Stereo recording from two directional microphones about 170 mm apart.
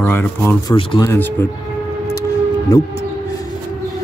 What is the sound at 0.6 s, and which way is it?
Speech, 25° left (ahead or behind).